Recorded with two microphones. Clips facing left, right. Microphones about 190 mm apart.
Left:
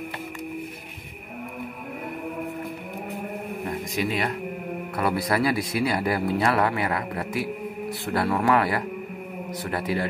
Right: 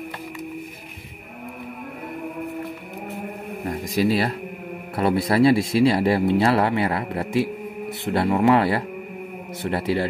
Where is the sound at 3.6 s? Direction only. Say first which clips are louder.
Right 7 dB; 35° right (ahead or behind).